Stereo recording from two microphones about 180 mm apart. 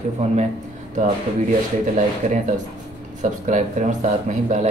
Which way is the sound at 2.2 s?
40° right (ahead or behind).